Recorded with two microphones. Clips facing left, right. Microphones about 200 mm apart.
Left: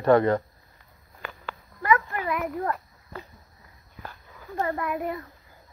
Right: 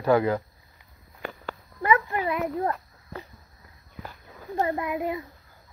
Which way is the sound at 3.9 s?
15° right (ahead or behind).